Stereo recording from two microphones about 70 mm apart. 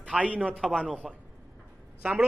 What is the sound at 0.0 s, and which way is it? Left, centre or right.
Speech, centre.